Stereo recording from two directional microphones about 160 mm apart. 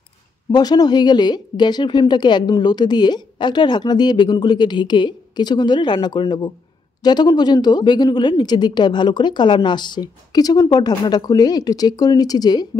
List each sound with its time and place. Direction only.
0.5 s speech: 25° left (ahead or behind)